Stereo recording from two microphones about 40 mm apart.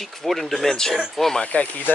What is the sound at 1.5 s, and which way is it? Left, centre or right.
Speech, left.